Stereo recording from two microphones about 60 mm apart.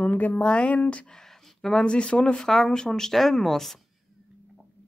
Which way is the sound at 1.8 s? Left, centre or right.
Centre.